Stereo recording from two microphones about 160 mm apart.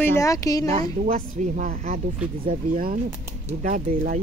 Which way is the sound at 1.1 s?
60° right (ahead or behind).